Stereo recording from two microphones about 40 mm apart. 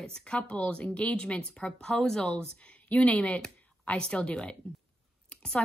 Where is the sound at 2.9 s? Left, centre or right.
Left.